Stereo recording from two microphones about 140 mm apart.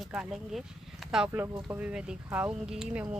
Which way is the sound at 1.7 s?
10° right (ahead or behind).